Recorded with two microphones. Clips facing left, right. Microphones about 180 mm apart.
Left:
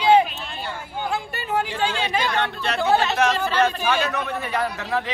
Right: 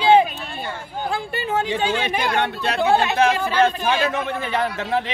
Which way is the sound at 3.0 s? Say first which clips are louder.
Right 2 dB; 10° right (ahead or behind).